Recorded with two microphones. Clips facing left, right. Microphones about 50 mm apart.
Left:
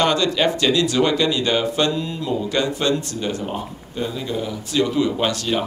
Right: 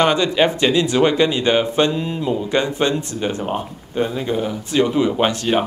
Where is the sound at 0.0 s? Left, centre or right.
Right.